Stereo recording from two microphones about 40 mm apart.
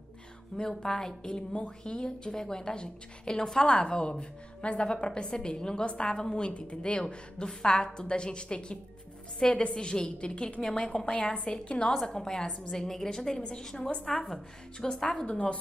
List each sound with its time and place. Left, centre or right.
0.6 s a woman's voice: centre
1.2 s a woman's voice: left
11.9 s a woman's voice: centre; by 14.2 s left
14.2 s a woman's voice: centre
15.2 s a woman's voice: left